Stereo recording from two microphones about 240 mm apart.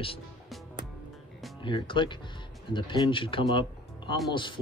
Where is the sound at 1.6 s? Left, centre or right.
Centre.